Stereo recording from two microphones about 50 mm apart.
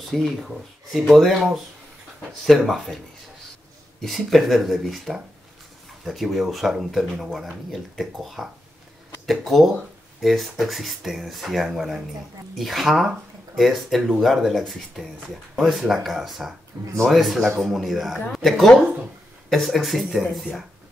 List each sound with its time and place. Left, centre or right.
0.1 s speech: centre
4.0 s speech: centre
6.0 s speech: centre
16.7 s speech: right
17.1 s speech: centre